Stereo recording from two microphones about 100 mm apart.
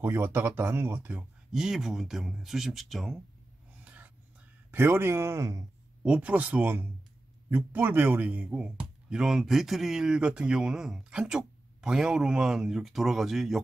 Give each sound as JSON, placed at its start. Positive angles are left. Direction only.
{"t": 0.0, "sound": "speech", "side_deg": -25}
{"t": 1.5, "sound": "speech", "side_deg": -5}
{"t": 3.8, "sound": "a sound", "side_deg": -15}
{"t": 4.6, "sound": "speech", "side_deg": -20}
{"t": 6.0, "sound": "speech", "side_deg": -10}